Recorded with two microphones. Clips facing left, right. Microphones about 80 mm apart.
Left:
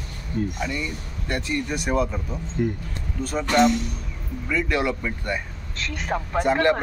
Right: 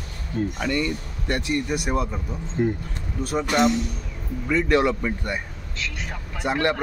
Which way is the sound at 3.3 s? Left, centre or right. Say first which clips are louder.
Left 1 dB; centre.